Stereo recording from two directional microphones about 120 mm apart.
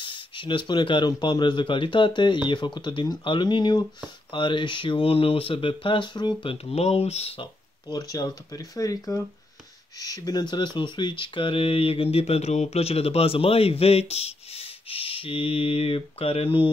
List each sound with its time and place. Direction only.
0.0 s speech: 45° left (ahead or behind); by 7.4 s 60° left (ahead or behind)
7.9 s speech: 30° left (ahead or behind); by 16.7 s 45° left (ahead or behind)